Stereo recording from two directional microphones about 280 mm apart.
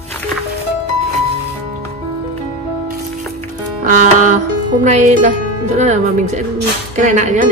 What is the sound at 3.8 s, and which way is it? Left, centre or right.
Music, right.